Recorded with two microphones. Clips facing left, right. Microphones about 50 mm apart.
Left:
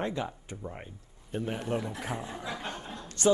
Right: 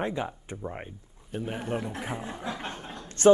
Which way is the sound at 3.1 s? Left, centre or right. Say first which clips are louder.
Right 7 dB; right.